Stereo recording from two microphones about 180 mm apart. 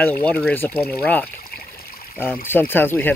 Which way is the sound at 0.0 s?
10° left (ahead or behind).